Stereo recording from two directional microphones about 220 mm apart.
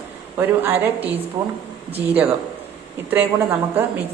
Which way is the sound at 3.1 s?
10° right (ahead or behind).